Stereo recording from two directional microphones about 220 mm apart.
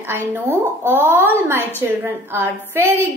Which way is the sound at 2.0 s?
10° right (ahead or behind).